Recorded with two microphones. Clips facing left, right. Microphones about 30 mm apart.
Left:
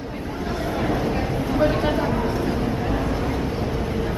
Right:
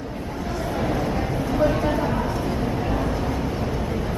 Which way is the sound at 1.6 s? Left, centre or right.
Left.